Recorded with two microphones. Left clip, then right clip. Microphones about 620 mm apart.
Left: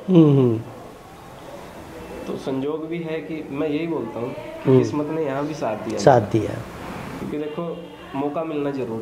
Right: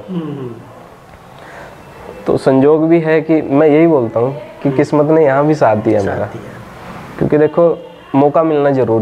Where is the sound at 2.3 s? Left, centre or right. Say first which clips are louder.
Right 17 dB; right.